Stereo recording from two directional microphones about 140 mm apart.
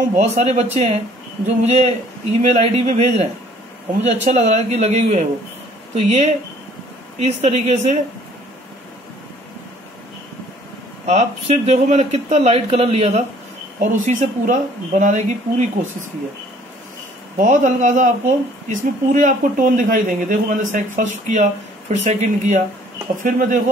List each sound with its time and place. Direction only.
0.1 s speech: 50° right (ahead or behind)
11.1 s speech: 50° right (ahead or behind)
13.7 s speech: 75° right (ahead or behind); by 15.9 s 55° right (ahead or behind)
17.4 s speech: 65° right (ahead or behind)
23.1 s speech: 65° right (ahead or behind)